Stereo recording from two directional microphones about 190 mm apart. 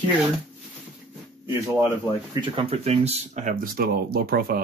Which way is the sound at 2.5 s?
30° right (ahead or behind).